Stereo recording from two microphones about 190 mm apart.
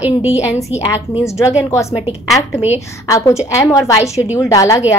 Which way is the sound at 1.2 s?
15° left (ahead or behind).